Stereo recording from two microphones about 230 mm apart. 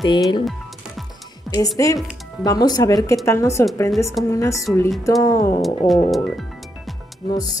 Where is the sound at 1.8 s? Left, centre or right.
Centre.